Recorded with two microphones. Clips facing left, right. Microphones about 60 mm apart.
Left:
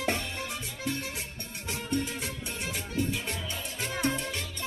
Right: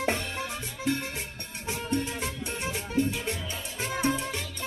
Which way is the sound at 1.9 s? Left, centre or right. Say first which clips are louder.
Right 1 dB; centre.